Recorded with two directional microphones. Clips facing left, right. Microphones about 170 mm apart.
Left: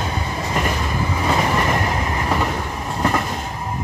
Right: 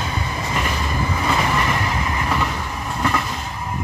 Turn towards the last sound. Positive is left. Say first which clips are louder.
# left 2 dB
turn(degrees=40)  # may be behind; listen again after turning